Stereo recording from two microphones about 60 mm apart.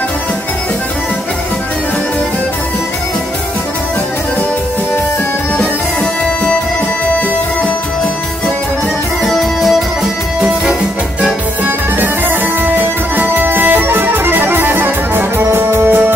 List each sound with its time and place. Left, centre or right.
9.3 s music: centre
10.4 s music: centre
11.6 s music: right